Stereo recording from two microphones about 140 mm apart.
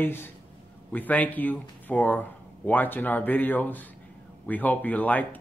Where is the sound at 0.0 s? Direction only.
15° left (ahead or behind).